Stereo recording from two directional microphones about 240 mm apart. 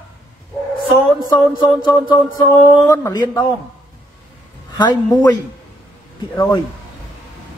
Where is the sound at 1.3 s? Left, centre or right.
Centre.